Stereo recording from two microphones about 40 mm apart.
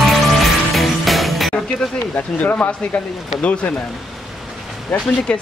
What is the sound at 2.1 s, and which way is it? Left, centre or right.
Speech, left.